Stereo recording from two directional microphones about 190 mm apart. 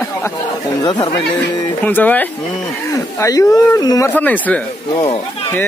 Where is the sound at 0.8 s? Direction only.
25° left (ahead or behind).